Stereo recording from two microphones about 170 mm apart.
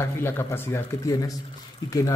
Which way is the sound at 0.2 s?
15° left (ahead or behind).